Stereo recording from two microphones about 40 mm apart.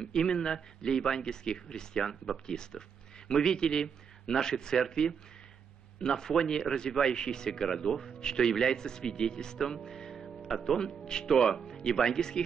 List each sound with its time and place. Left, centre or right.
0.0 s speech: centre
9.8 s music: centre
10.1 s music: centre
11.1 s speech: centre